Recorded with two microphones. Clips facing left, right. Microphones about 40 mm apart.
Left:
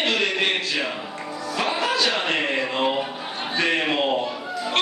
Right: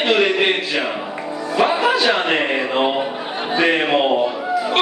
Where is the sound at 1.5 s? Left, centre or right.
Centre.